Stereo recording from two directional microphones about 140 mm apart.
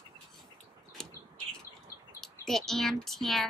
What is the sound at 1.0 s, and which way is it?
Bird, 5° left (ahead or behind).